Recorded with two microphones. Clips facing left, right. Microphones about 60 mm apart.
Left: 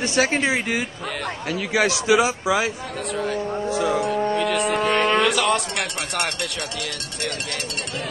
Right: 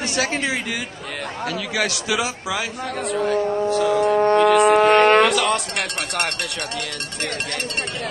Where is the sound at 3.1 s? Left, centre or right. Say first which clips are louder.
Right 5 dB; centre.